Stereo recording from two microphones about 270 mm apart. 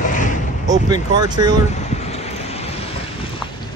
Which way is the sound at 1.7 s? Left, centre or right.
Left.